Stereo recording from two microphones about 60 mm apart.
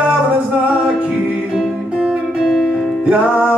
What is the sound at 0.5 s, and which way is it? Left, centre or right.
Music, centre.